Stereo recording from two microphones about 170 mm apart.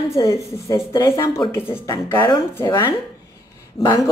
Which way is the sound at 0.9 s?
20° left (ahead or behind).